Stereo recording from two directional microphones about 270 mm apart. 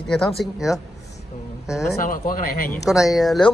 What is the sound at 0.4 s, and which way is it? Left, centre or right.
Speech, centre.